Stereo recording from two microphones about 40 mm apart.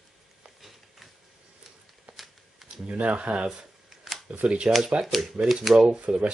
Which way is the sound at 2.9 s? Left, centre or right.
Right.